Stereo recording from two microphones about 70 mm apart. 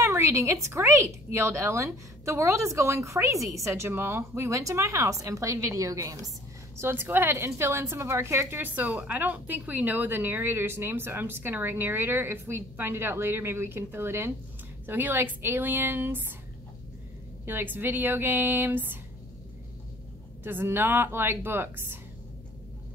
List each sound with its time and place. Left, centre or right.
0.0 s a woman's voice: right
6.8 s a woman's voice: right
17.5 s speech: right
20.4 s a woman's voice: right